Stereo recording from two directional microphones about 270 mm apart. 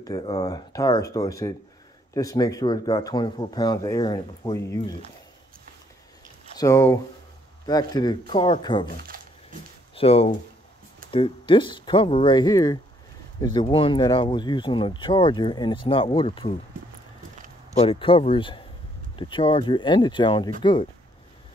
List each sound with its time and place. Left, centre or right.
0.0 s speech: centre
6.6 s speech: centre
9.9 s speech: left
17.7 s speech: centre